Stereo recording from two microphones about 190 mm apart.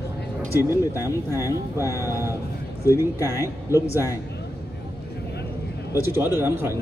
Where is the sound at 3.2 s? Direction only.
15° left (ahead or behind).